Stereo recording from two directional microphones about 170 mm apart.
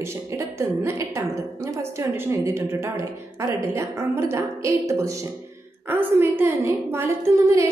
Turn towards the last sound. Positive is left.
turn(degrees=-15)  # may be behind; listen again after turning